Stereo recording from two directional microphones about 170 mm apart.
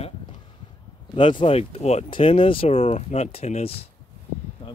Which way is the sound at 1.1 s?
30° left (ahead or behind).